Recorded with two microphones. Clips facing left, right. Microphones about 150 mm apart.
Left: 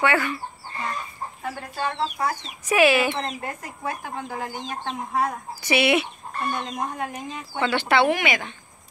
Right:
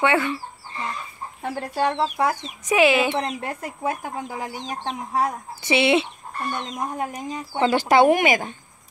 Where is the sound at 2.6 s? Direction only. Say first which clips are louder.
Right 1 dB; 20° right (ahead or behind).